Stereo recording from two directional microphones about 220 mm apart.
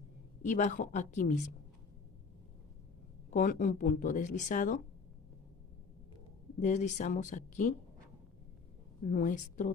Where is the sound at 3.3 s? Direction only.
35° left (ahead or behind).